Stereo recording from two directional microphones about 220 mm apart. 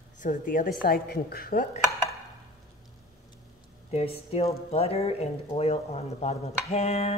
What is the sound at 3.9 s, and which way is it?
Speech, 25° left (ahead or behind).